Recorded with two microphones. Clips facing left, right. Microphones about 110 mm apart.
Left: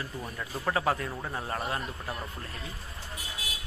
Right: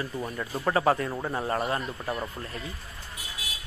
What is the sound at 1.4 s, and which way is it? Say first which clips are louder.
Speech: right 5 dB; centre (ahead or behind).